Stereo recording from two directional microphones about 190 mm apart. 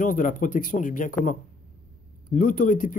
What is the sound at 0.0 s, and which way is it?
A man's voice, 45° left (ahead or behind).